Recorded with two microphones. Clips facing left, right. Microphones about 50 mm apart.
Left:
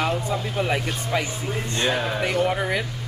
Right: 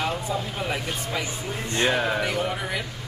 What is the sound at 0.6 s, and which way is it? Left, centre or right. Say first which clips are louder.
Speech: left 3 dB; centre.